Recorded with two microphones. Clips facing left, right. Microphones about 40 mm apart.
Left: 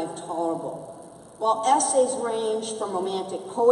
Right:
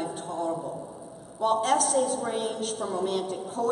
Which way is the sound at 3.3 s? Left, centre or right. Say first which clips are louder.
Left 6 dB; centre.